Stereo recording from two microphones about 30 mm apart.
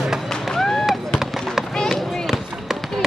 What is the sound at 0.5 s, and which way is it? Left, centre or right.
Fireworks, centre.